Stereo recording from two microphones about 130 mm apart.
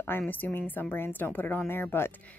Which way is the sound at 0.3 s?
15° left (ahead or behind).